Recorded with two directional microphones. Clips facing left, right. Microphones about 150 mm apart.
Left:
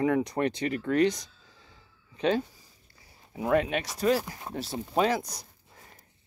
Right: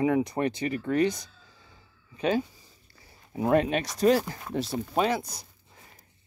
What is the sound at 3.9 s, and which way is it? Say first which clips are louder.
Speech: right 4 dB; 20° right (ahead or behind).